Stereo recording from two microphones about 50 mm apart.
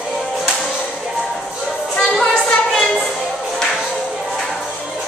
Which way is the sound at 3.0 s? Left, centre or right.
Centre.